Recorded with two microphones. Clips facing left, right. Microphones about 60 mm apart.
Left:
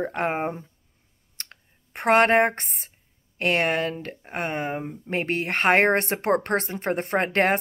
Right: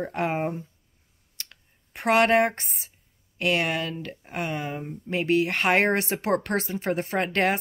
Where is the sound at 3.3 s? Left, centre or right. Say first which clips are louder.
Left 2 dB; left.